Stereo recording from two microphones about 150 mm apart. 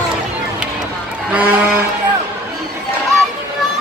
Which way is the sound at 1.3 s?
10° right (ahead or behind).